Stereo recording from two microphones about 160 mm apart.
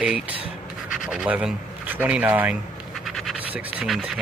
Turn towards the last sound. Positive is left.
turn(degrees=0)  # may be behind; listen again after turning